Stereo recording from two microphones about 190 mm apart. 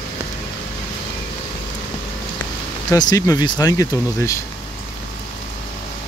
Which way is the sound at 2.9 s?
20° left (ahead or behind).